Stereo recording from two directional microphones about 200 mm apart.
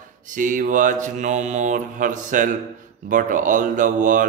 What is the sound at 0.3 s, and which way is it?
Speech, 40° right (ahead or behind).